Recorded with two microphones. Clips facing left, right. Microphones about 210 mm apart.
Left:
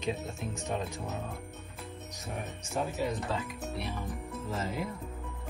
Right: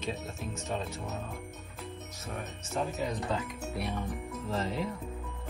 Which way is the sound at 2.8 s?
Centre (ahead or behind).